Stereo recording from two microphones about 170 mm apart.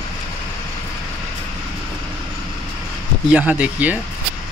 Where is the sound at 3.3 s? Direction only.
10° right (ahead or behind).